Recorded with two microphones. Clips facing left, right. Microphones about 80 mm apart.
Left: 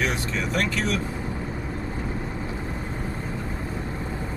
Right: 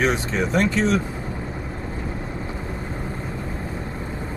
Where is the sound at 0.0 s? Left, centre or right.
Right.